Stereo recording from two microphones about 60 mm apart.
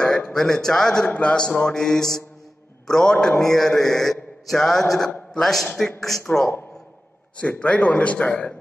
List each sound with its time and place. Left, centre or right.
0.0 s a man's voice: centre
7.3 s a man's voice: left